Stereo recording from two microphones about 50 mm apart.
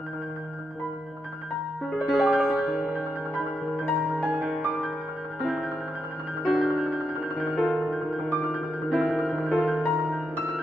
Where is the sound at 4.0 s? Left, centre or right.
Right.